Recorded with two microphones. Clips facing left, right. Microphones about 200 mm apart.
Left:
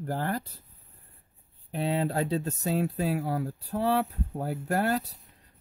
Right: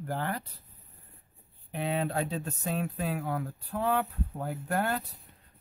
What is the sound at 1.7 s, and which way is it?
Speech, 35° left (ahead or behind).